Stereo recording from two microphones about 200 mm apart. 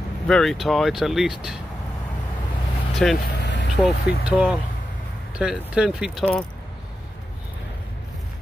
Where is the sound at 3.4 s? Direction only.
60° left (ahead or behind).